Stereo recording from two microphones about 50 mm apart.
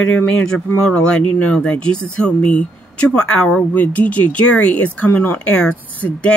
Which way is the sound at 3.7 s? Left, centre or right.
Left.